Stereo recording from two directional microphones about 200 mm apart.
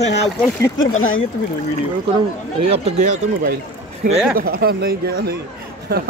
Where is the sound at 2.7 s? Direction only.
35° right (ahead or behind).